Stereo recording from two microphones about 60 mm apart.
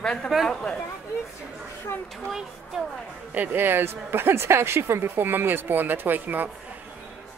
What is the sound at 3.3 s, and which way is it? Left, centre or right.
Speech, right.